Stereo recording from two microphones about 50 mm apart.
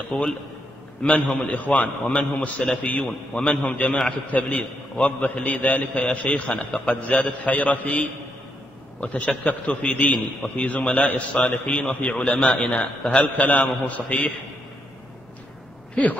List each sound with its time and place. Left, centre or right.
0.1 s a man's voice: left
2.8 s a man's voice: left
3.1 s a man's voice: centre
3.6 s a man's voice: left
15.9 s speech: left